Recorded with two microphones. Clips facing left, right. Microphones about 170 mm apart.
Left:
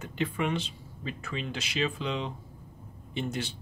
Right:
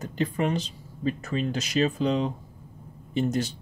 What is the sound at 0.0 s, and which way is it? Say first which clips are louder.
Speech: right 4 dB; 40° right (ahead or behind).